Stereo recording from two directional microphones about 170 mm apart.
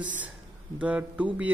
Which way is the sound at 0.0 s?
10° right (ahead or behind).